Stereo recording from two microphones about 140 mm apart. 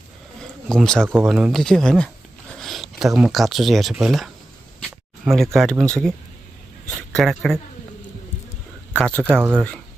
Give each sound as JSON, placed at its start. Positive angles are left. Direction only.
{"t": 0.7, "sound": "speech", "side_deg": 5}
{"t": 1.0, "sound": "speech", "side_deg": -15}
{"t": 1.3, "sound": "speech", "side_deg": 0}
{"t": 7.2, "sound": "speech", "side_deg": 5}
{"t": 8.9, "sound": "speech", "side_deg": 5}
{"t": 9.4, "sound": "speech", "side_deg": -15}